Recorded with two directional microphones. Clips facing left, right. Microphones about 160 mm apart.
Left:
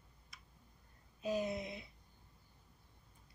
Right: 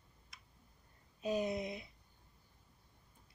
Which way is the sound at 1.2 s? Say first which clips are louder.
Right 2 dB; 20° right (ahead or behind).